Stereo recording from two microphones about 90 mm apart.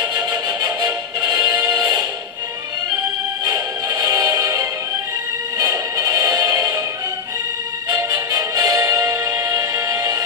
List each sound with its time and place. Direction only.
0.0 s music: 45° right (ahead or behind)
3.4 s music: 45° right (ahead or behind)
7.9 s music: 45° right (ahead or behind)